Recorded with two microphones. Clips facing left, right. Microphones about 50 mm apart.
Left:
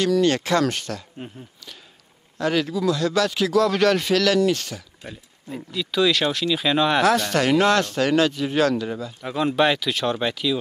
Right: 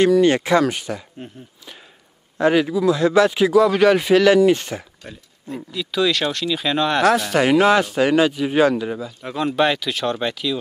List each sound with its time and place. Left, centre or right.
0.0 s speech: centre
2.3 s speech: right
5.0 s speech: centre